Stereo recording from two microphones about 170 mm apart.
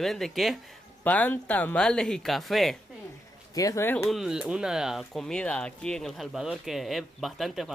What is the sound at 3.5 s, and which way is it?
Speech, 20° left (ahead or behind).